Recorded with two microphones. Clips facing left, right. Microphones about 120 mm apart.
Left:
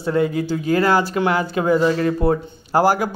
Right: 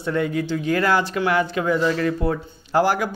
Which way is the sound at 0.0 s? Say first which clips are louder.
Left 3 dB; 30° left (ahead or behind).